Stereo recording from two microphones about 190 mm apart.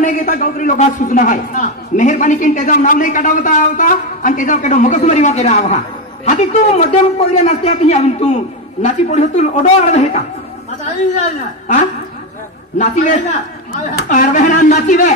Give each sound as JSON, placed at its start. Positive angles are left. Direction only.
{"t": 0.0, "sound": "a man's voice", "side_deg": 40}